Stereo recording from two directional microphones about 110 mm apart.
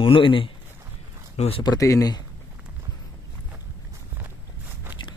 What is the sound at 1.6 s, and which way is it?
Speech, 35° left (ahead or behind).